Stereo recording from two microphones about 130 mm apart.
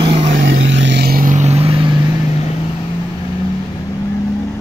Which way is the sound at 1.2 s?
70° right (ahead or behind).